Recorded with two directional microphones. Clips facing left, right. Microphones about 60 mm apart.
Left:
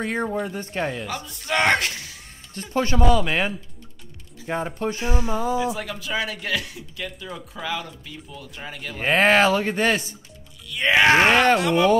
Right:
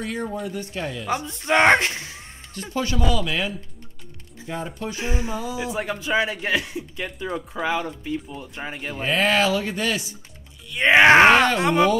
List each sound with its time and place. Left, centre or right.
0.0 s speech: left
1.0 s a man's voice: right
2.7 s speech: left
4.9 s a man's voice: right
5.3 s speech: left
5.6 s a man's voice: right
9.0 s speech: left
10.7 s a man's voice: right